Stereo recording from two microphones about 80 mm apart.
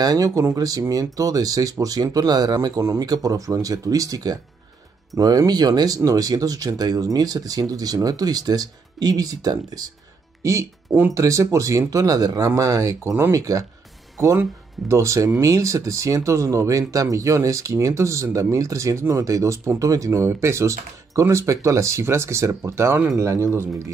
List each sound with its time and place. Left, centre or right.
0.0 s speech: right
11.1 s speech: right
14.2 s speech: right